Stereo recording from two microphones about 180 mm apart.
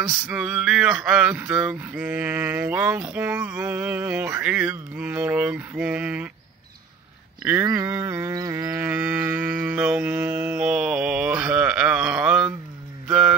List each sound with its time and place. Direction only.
0.0 s speech: 5° right (ahead or behind)
7.6 s a sound: 20° right (ahead or behind)
8.7 s mantra: 10° right (ahead or behind)